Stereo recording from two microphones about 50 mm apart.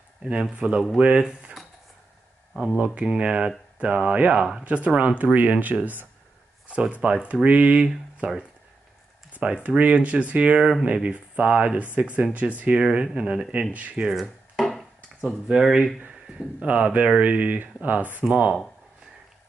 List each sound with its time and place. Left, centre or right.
0.3 s speech: right
2.8 s speech: right
4.6 s speech: right
6.7 s speech: right
9.3 s a sound: right
9.8 s speech: right
14.6 s finger snapping: centre
15.2 s speech: centre
16.5 s speech: right